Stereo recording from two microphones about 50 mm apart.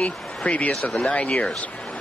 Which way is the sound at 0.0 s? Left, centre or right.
Left.